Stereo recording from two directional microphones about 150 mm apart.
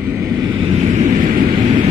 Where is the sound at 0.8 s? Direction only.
55° right (ahead or behind).